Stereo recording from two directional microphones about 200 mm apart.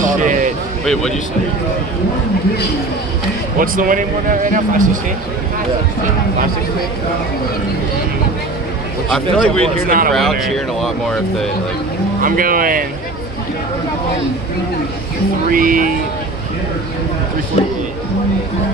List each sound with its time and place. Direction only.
0.0 s a sound: 40° right (ahead or behind)
3.5 s speech: 45° right (ahead or behind)
9.1 s speech: 5° left (ahead or behind)
9.8 s speech: 45° right (ahead or behind)
10.1 s speech: centre (ahead or behind)
12.2 s speech: 45° right (ahead or behind)
15.5 s speech: 45° right (ahead or behind)